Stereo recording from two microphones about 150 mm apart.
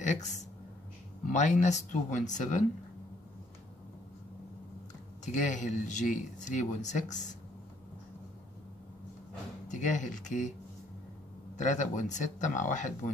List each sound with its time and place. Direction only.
0.0 s speech: 55° left (ahead or behind)
5.2 s a man's voice: 55° left (ahead or behind)
9.7 s a man's voice: 55° left (ahead or behind)
11.5 s a man's voice: 55° left (ahead or behind)